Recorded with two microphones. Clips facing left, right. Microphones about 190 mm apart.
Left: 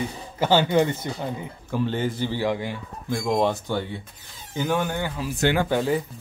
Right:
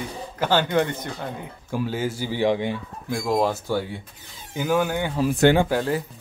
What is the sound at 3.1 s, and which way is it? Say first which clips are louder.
Speech: even; 5° right (ahead or behind).